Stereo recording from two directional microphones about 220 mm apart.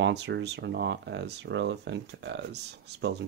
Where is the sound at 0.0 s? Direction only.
50° right (ahead or behind).